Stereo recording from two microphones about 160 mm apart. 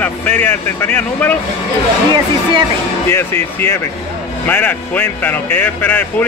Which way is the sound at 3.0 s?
15° left (ahead or behind).